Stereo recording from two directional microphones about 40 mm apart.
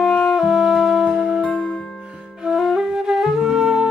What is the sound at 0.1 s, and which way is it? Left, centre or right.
Music, centre.